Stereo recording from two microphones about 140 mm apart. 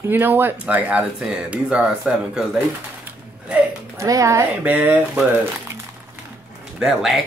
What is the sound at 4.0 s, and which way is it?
Speech, 25° right (ahead or behind).